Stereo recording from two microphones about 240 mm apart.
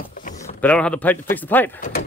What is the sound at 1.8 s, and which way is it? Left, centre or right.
Speech, left.